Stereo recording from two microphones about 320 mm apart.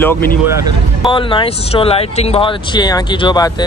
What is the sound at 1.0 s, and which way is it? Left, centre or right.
Speech, centre.